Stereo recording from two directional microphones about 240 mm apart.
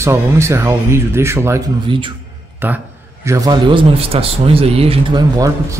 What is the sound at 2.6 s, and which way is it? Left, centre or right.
A man's voice, centre.